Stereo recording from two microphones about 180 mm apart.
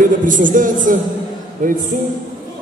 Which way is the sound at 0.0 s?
45° right (ahead or behind).